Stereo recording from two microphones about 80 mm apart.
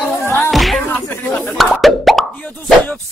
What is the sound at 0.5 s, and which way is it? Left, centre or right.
Music, centre.